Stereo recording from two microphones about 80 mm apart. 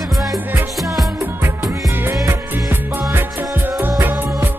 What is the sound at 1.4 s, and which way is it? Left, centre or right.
Music, right.